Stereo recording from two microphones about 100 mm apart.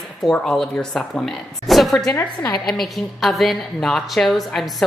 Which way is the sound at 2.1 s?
35° left (ahead or behind).